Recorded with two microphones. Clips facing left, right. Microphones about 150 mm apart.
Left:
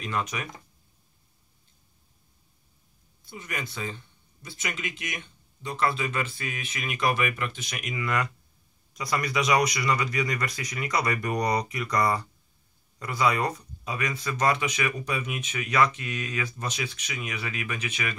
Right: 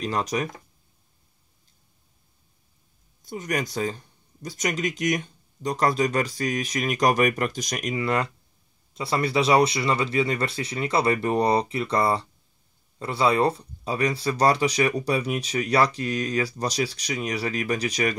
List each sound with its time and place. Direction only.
0.0 s speech: 35° right (ahead or behind)
3.2 s speech: 45° right (ahead or behind)